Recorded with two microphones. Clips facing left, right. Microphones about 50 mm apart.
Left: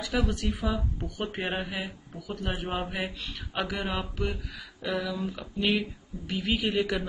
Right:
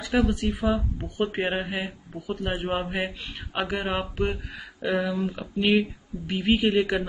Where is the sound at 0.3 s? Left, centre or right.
Right.